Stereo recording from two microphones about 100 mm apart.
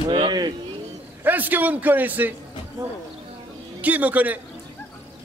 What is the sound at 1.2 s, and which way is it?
A man's voice, 15° right (ahead or behind).